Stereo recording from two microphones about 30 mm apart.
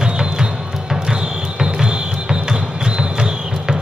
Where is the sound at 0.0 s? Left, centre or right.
Right.